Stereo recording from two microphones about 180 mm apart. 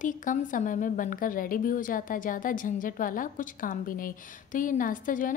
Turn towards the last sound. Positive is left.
turn(degrees=50)  # may be behind; listen again after turning